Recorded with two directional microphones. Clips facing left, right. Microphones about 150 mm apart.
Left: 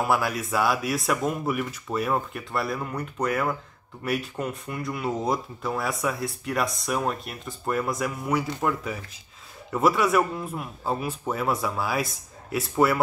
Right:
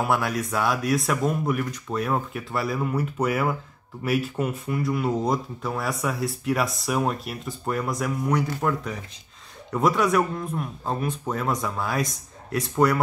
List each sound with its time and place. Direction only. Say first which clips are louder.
0.1 s speech: even; centre (ahead or behind)